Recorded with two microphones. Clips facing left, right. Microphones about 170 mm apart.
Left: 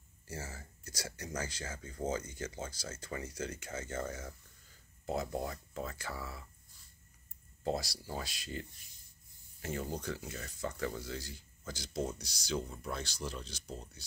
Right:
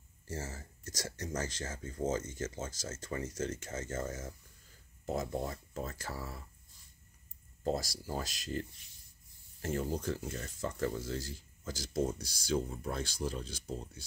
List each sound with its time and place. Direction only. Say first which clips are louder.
0.5 s speech: right 3 dB; 45° right (ahead or behind)
5.0 s speech: right 1 dB; 45° right (ahead or behind)
7.6 s speech: right 1 dB; 45° right (ahead or behind)
9.6 s speech: right 4 dB; 45° right (ahead or behind)